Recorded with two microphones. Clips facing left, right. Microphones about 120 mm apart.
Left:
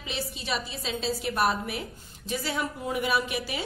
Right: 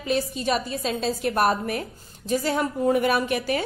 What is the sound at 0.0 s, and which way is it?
A woman's voice, 45° right (ahead or behind).